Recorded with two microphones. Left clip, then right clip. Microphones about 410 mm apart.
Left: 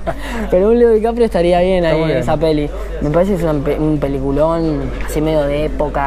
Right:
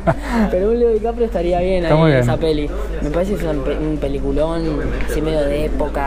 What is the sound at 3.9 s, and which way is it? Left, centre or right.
Speech, left.